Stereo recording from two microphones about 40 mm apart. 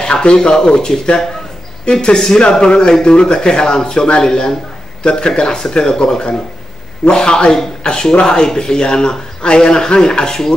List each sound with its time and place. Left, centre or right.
0.0 s speech: left